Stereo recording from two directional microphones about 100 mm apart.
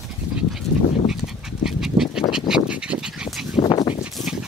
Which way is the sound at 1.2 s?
5° right (ahead or behind).